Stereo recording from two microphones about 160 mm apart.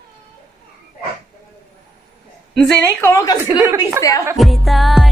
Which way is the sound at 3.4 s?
10° right (ahead or behind).